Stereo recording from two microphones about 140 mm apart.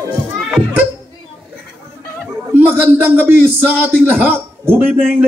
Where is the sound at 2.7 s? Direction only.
15° right (ahead or behind).